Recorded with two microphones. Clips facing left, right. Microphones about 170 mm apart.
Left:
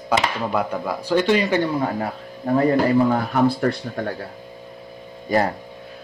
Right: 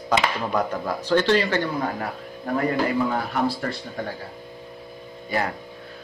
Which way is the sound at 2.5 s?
40° left (ahead or behind).